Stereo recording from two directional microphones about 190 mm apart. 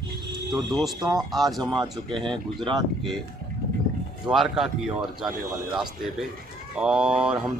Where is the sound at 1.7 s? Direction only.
25° right (ahead or behind).